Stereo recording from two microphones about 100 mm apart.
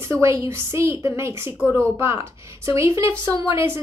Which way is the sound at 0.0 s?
30° right (ahead or behind).